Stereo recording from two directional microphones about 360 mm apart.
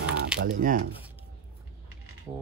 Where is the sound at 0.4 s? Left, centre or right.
Right.